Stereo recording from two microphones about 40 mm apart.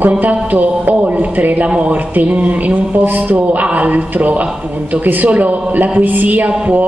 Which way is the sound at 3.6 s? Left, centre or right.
Right.